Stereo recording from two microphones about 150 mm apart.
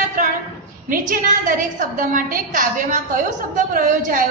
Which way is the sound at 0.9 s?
65° right (ahead or behind).